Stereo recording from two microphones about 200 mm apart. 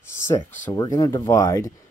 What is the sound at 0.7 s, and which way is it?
Speech, 15° left (ahead or behind).